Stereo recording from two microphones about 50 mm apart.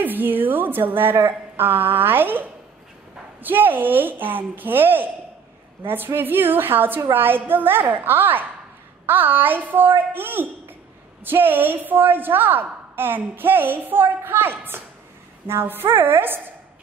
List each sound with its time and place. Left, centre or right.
0.0 s a woman's voice: right
3.4 s a woman's voice: right